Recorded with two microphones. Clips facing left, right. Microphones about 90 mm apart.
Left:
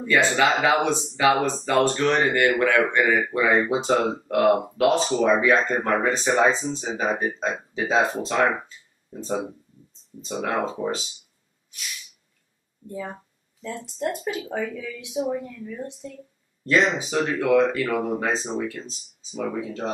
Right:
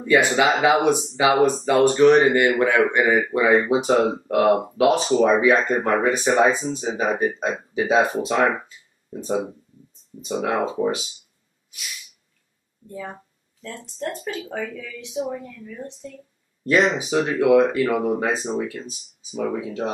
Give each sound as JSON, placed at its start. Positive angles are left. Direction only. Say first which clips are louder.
{"t": 0.1, "sound": "speech", "louder": "right 2 dB", "side_deg": -15}
{"t": 12.8, "sound": "speech", "louder": "left 1 dB", "side_deg": 5}
{"t": 16.8, "sound": "speech", "louder": "right 2 dB", "side_deg": -10}